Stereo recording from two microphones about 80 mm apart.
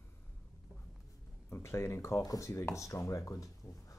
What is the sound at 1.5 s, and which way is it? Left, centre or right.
Speech, left.